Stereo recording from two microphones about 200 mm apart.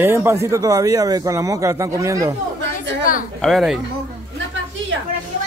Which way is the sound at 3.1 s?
45° left (ahead or behind).